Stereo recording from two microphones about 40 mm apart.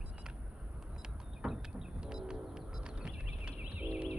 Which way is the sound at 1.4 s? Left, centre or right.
Centre.